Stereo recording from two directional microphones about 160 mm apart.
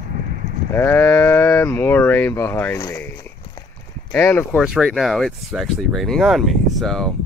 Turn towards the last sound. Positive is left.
turn(degrees=5)  # may be behind; listen again after turning